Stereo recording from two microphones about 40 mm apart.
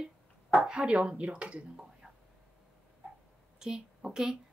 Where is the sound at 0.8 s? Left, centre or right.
Right.